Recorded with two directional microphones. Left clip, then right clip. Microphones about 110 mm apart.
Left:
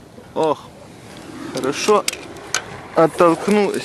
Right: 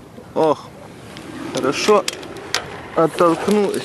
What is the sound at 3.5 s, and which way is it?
Speech, 20° left (ahead or behind).